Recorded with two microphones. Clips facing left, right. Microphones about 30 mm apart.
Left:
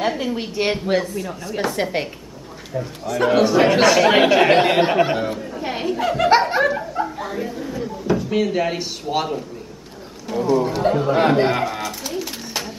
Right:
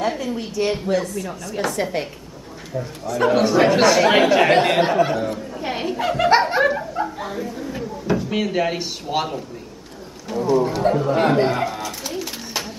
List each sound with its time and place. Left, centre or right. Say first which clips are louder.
0.4 s a woman's voice: left 1 dB; left
1.5 s speech: left 1 dB; centre
2.7 s speech: left 1 dB; centre
4.2 s speech: left 1 dB; centre
5.0 s speech: left 1 dB; left
5.5 s chuckle: left 1 dB; centre
8.1 s speech: left 2 dB; centre
11.7 s bird: left 2 dB; centre